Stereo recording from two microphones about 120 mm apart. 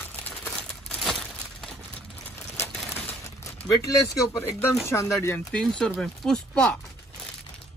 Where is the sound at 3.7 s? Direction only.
30° left (ahead or behind).